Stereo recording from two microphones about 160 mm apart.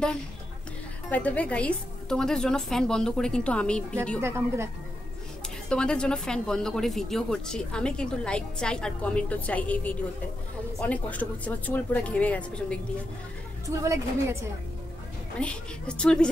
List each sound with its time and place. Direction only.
1.1 s speech: 10° left (ahead or behind)
4.2 s a woman's voice: 15° right (ahead or behind)
5.7 s a woman's voice: 5° left (ahead or behind)
13.7 s a woman's voice: 20° right (ahead or behind)
15.3 s a woman's voice: 5° left (ahead or behind)